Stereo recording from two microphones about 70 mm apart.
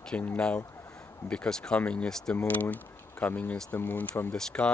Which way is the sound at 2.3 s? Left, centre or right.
Left.